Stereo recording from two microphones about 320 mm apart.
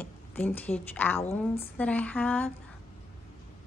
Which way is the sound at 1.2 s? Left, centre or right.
Centre.